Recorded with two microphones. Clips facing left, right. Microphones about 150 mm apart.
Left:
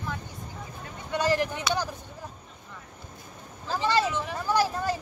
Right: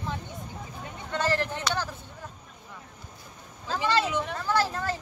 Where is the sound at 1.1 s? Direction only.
15° left (ahead or behind).